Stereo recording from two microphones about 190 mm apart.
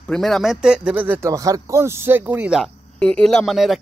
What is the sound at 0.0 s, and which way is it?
Speech, centre (ahead or behind).